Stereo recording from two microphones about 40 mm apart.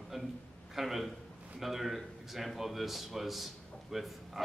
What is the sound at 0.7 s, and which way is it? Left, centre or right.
A man's voice, centre.